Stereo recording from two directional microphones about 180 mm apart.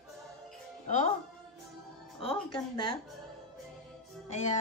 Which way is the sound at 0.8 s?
40° left (ahead or behind).